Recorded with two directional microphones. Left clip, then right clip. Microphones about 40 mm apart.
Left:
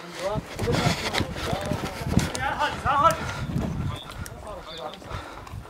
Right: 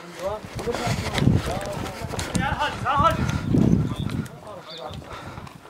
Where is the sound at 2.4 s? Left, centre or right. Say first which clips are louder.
Right 3 dB; centre.